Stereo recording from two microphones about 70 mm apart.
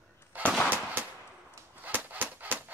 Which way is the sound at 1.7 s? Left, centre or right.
Right.